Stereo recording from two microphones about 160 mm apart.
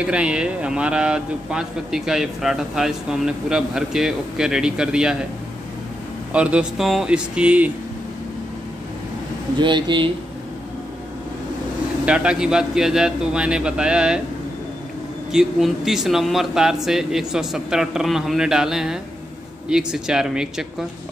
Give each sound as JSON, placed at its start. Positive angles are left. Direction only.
{"t": 0.0, "sound": "speech", "side_deg": -5}
{"t": 6.3, "sound": "speech", "side_deg": -5}
{"t": 9.6, "sound": "speech", "side_deg": -30}
{"t": 12.1, "sound": "speech", "side_deg": -5}
{"t": 15.3, "sound": "speech", "side_deg": -5}